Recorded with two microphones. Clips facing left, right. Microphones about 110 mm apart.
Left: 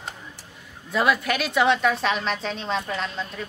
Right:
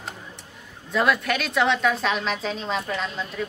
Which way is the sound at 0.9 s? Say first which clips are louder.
Even; centre (ahead or behind).